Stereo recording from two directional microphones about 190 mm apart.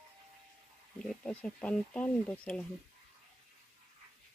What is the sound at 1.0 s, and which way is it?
Speech, 5° left (ahead or behind).